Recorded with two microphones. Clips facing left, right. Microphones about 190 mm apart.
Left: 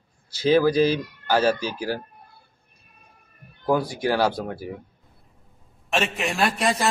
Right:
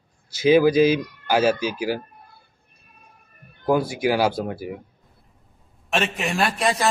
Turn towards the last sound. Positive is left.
turn(degrees=0)  # may be behind; listen again after turning